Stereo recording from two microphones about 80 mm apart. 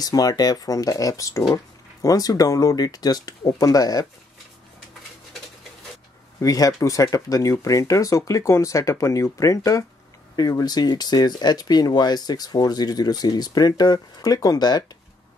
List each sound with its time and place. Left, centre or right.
0.0 s speech: left
6.4 s speech: left
10.3 s speech: left